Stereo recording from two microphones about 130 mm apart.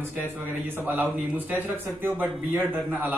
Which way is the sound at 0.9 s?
15° right (ahead or behind).